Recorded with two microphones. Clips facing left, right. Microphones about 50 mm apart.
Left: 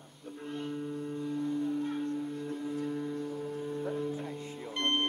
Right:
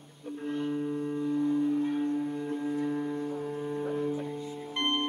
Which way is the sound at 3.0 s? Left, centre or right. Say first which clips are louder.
Right 3 dB; right.